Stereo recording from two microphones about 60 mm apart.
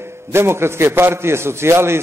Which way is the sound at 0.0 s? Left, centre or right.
Right.